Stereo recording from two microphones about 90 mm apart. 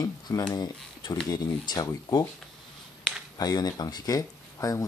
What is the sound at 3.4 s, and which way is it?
Speech, 45° left (ahead or behind).